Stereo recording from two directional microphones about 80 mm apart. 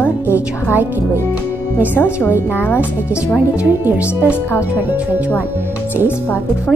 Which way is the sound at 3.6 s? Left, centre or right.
Centre.